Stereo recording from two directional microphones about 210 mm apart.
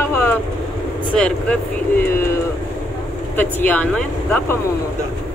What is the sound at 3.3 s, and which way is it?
Speech, 10° left (ahead or behind).